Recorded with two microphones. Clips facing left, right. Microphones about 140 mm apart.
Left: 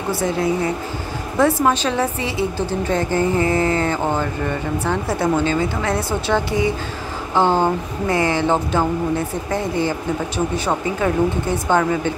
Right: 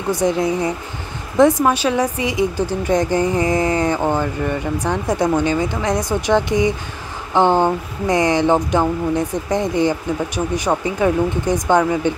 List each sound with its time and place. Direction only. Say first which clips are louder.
0.1 s a woman's voice: right 2 dB; 15° right (ahead or behind)